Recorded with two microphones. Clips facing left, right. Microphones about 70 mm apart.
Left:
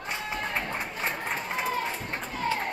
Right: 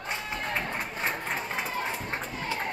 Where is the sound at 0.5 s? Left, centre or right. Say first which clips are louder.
Even; centre.